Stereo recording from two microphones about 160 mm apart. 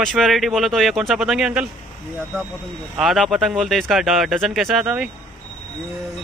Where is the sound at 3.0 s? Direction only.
Centre (ahead or behind).